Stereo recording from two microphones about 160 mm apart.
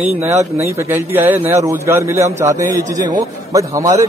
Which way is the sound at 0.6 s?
15° right (ahead or behind).